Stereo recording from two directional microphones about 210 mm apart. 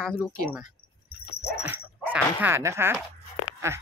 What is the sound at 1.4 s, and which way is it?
Dog, 50° left (ahead or behind).